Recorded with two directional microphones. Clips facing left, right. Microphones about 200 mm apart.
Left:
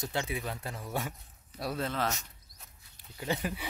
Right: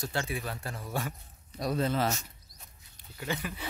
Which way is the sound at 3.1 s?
25° left (ahead or behind).